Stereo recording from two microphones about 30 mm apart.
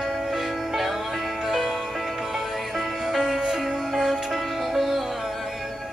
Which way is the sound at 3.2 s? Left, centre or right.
Centre.